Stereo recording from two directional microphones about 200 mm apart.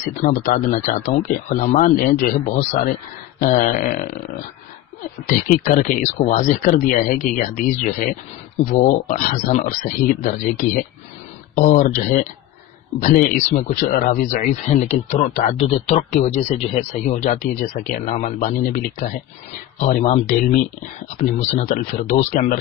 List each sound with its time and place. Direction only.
0.1 s speech: 40° left (ahead or behind)
3.3 s a sound: 45° left (ahead or behind)
5.2 s speech: 40° left (ahead or behind)